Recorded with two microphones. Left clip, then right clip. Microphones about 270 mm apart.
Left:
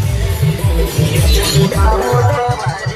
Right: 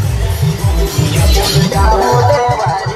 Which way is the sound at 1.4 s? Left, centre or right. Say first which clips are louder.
Right 3 dB; right.